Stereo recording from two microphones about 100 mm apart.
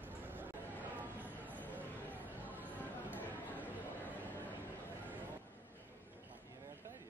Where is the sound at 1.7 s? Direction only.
15° right (ahead or behind).